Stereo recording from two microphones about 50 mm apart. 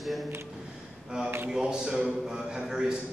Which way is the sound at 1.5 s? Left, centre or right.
Centre.